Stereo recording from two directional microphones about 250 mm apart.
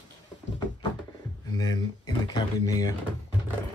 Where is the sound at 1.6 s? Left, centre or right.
Centre.